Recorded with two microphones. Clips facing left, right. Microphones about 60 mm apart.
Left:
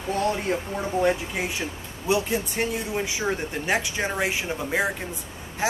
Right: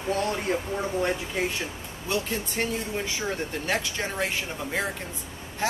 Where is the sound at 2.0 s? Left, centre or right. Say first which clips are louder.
Left 5 dB; centre.